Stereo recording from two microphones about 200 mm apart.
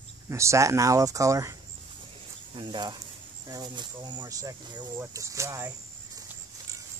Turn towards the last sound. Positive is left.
turn(degrees=-15)  # may be behind; listen again after turning